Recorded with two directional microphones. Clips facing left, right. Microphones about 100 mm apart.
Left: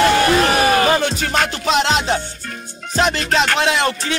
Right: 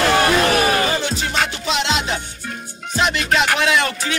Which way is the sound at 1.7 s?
45° left (ahead or behind).